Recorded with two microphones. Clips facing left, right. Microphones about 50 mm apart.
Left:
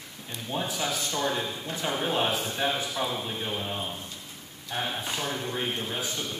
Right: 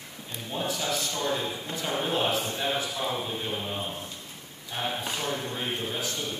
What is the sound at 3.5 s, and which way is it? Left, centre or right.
Speech, centre.